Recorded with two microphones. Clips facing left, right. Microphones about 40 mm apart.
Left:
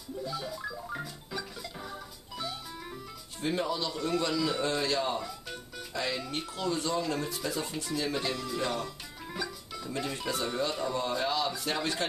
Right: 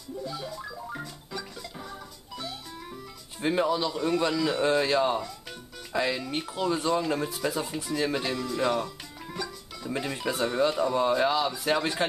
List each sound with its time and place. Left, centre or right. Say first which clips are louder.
0.2 s music: left 1 dB; centre
3.3 s speech: right 5 dB; right
3.6 s speech: right 6 dB; centre
9.4 s music: right 1 dB; centre
9.9 s speech: right 4 dB; centre